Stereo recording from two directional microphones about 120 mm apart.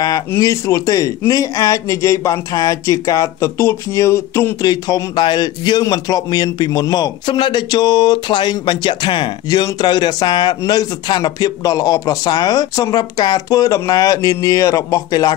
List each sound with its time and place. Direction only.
0.4 s a man's voice: 25° left (ahead or behind)
4.6 s a man's voice: 35° left (ahead or behind)